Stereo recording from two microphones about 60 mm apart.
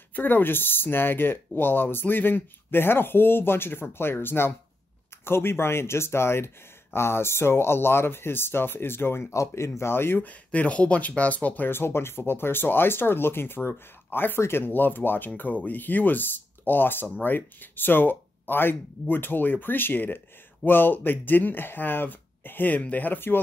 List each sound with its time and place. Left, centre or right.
0.1 s speech: left
9.3 s speech: left
9.8 s speech: left
10.2 s speech: left
11.7 s speech: left